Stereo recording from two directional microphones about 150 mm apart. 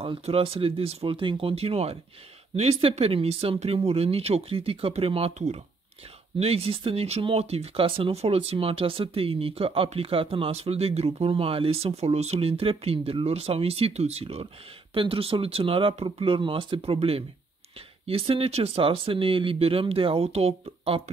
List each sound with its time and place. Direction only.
0.0 s speech: 40° right (ahead or behind)